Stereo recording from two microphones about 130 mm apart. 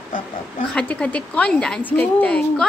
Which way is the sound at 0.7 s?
10° left (ahead or behind).